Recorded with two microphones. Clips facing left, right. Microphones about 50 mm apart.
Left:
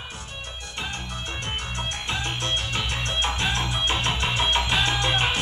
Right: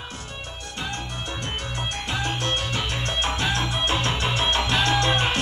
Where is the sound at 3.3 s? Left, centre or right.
Left.